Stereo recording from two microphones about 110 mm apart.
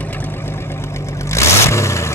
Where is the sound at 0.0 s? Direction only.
15° left (ahead or behind).